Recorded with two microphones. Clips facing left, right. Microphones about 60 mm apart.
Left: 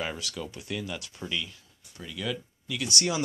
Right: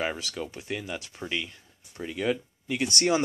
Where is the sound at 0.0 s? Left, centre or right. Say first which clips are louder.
Right 3 dB; right.